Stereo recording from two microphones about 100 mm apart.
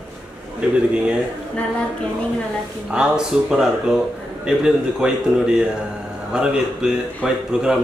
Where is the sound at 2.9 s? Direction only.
5° right (ahead or behind).